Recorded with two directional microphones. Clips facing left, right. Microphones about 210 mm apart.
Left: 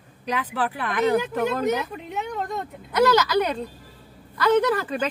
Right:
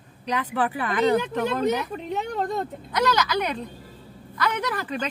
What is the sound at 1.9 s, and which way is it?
Speech, 35° right (ahead or behind).